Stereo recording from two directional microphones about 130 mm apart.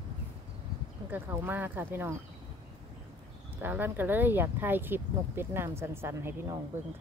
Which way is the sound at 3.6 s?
15° right (ahead or behind).